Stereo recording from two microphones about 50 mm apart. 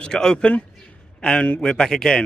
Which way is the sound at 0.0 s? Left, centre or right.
Centre.